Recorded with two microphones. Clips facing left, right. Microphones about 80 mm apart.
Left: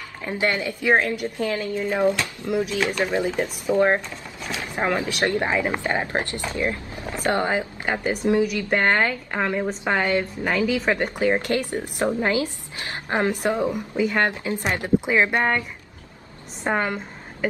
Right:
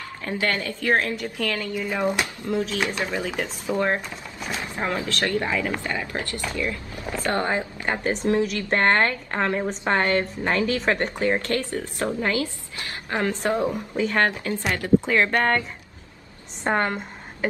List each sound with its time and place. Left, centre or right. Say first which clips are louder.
0.2 s a woman's voice: left 2 dB; centre
13.6 s a woman's voice: left 1 dB; centre
16.6 s a woman's voice: right 1 dB; centre